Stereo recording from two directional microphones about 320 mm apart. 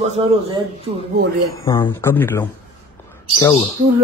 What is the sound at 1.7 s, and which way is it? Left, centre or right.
A man's voice, centre.